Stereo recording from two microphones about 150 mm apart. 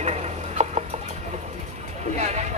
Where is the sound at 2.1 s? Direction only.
50° right (ahead or behind).